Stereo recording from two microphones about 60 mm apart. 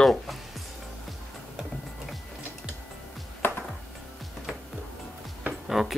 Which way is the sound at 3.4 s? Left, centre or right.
Left.